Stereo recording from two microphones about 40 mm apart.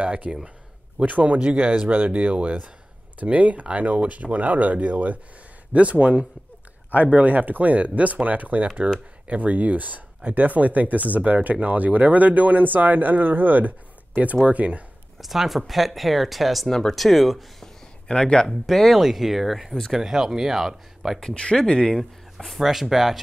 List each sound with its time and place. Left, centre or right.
0.0 s speech: right
1.9 s speech: right
15.1 s speech: centre
18.0 s speech: left
18.7 s speech: centre
21.6 s speech: left
21.9 s speech: centre
22.6 s speech: centre